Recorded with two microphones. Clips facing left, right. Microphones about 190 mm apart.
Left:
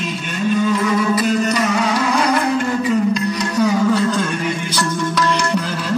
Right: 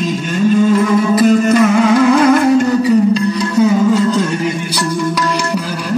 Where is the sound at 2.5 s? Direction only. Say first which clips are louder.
Right 7 dB; 40° right (ahead or behind).